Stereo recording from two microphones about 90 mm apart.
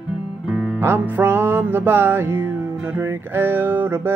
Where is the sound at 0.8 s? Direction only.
25° right (ahead or behind).